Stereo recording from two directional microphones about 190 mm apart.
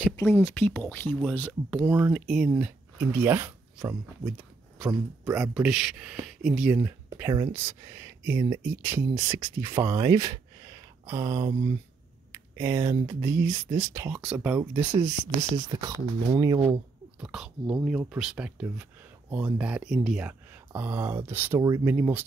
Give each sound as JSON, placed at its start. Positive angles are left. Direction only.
{"t": 0.2, "sound": "speech", "side_deg": 10}
{"t": 1.9, "sound": "speech", "side_deg": -15}
{"t": 2.2, "sound": "speech", "side_deg": 0}
{"t": 2.5, "sound": "speech", "side_deg": -10}
{"t": 5.4, "sound": "speech", "side_deg": 0}
{"t": 6.8, "sound": "speech", "side_deg": -15}
{"t": 12.3, "sound": "a sound", "side_deg": -10}
{"t": 12.8, "sound": "speech", "side_deg": -25}
{"t": 13.2, "sound": "speech", "side_deg": -15}
{"t": 17.2, "sound": "speech", "side_deg": -5}